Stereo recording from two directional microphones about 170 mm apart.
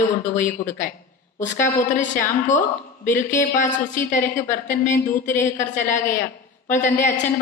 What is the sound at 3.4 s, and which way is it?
Speech, 45° left (ahead or behind).